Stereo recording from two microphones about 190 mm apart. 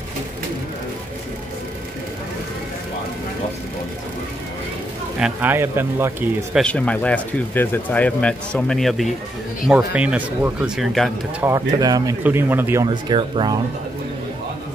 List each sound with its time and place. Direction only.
5.2 s speech: 10° right (ahead or behind)
6.6 s speech: 5° left (ahead or behind)
11.4 s speech: 20° right (ahead or behind)
12.8 s speech: 25° right (ahead or behind)